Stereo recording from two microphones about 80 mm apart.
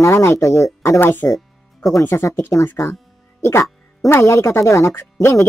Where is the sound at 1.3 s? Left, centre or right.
Centre.